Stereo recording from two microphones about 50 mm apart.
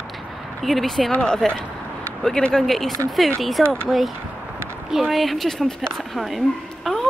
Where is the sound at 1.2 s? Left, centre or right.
Centre.